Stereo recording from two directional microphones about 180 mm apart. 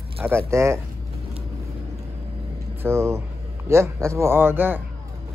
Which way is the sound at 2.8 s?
15° right (ahead or behind).